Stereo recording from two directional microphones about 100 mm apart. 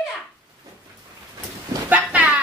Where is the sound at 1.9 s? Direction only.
15° right (ahead or behind).